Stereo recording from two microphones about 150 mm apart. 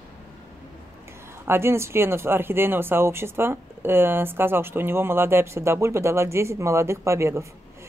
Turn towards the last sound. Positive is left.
turn(degrees=-20)  # may be behind; listen again after turning